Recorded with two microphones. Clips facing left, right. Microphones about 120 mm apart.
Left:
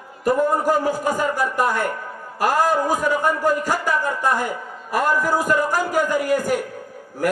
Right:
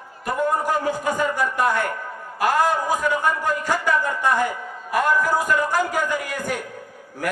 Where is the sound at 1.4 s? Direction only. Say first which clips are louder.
Left 1 dB; 10° left (ahead or behind).